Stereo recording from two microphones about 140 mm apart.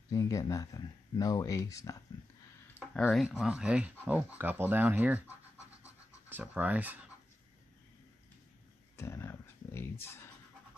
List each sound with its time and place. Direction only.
0.1 s speech: 20° left (ahead or behind)
2.9 s speech: 5° left (ahead or behind)
6.2 s speech: 10° right (ahead or behind)
8.9 s dog: 20° left (ahead or behind)